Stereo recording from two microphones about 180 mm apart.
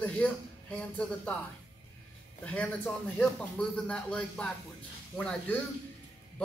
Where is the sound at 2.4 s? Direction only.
5° left (ahead or behind).